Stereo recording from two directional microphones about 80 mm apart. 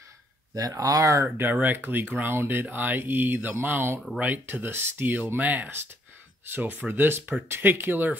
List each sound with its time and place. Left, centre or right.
0.6 s speech: right
1.3 s speech: right